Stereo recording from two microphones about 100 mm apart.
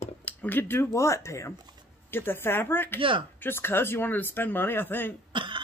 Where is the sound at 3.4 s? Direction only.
25° left (ahead or behind).